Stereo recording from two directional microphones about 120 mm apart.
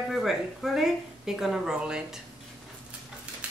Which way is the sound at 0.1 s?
Centre (ahead or behind).